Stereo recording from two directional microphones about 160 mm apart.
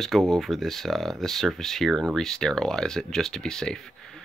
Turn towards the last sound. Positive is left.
turn(degrees=5)  # may be behind; listen again after turning